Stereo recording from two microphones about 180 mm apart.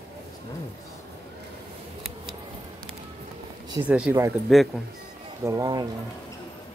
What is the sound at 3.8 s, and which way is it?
Speech, 5° right (ahead or behind).